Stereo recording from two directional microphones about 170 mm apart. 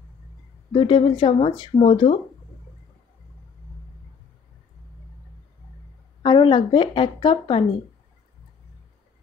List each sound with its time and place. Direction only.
0.7 s speech: 30° left (ahead or behind)
6.2 s a woman's voice: 25° left (ahead or behind)